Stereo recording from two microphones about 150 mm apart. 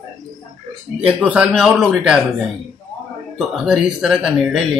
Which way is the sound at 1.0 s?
10° right (ahead or behind).